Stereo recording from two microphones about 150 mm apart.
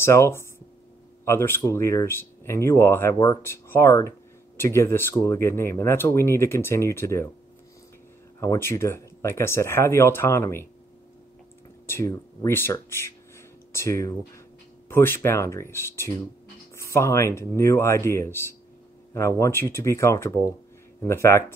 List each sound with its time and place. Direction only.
0.0 s speech: 15° left (ahead or behind)
8.4 s speech: 20° left (ahead or behind)
11.9 s speech: 20° left (ahead or behind)